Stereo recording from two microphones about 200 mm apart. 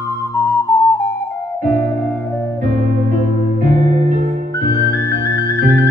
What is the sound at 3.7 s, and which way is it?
Music, 40° right (ahead or behind).